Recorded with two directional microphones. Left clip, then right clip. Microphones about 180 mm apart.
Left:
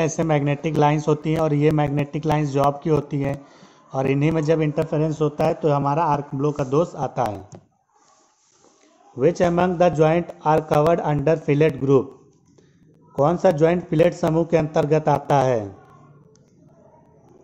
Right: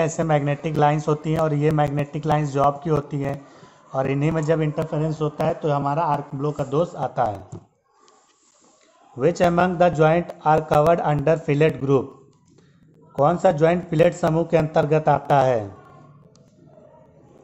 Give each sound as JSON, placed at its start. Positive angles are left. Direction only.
{"t": 0.0, "sound": "speech", "side_deg": 35}
{"t": 9.2, "sound": "speech", "side_deg": 20}
{"t": 13.2, "sound": "speech", "side_deg": 25}